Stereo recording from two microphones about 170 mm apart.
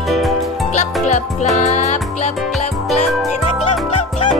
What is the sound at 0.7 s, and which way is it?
Music, 45° left (ahead or behind).